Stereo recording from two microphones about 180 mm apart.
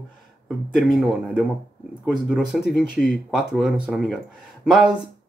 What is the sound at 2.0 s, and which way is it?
Speech, centre (ahead or behind).